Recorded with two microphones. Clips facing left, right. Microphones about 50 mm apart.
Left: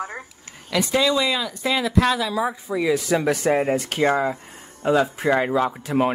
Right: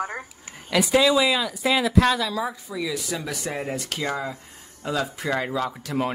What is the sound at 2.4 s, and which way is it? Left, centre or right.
Speech, left.